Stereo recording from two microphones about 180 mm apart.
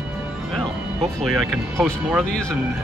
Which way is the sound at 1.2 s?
5° left (ahead or behind).